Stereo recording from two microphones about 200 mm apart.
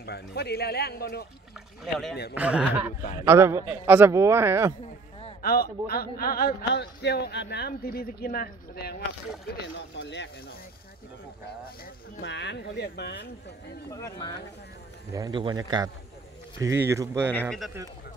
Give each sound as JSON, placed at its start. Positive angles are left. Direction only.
{"t": 0.0, "sound": "a man's voice", "side_deg": 55}
{"t": 2.3, "sound": "a man's voice", "side_deg": -5}
{"t": 5.4, "sound": "a man's voice", "side_deg": 50}
{"t": 9.8, "sound": "speech", "side_deg": 60}
{"t": 11.8, "sound": "speech", "side_deg": 60}
{"t": 13.8, "sound": "speech", "side_deg": 15}
{"t": 15.1, "sound": "a man's voice", "side_deg": -20}
{"t": 17.3, "sound": "speech", "side_deg": 5}